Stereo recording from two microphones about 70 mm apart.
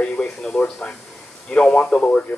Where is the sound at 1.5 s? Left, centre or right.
Centre.